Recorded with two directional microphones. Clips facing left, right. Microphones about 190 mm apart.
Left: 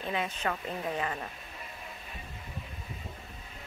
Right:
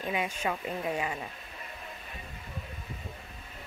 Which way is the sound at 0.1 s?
10° right (ahead or behind).